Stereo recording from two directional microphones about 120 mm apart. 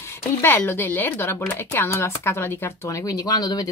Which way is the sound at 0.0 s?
20° left (ahead or behind).